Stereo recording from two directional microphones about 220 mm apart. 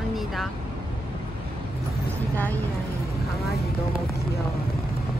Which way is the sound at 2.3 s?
10° left (ahead or behind).